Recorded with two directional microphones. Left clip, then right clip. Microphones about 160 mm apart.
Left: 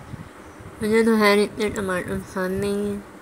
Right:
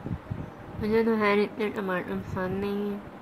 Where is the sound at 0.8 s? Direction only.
30° left (ahead or behind).